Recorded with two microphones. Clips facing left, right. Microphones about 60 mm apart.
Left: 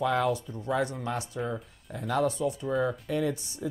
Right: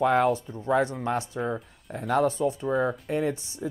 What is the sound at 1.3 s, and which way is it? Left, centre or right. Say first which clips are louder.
Speech: right 3 dB; right.